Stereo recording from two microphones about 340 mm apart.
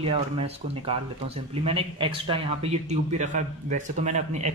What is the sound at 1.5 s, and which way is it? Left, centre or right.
A man's voice, centre.